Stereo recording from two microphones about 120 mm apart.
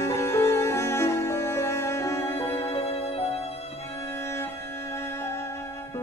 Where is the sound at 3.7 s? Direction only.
20° left (ahead or behind).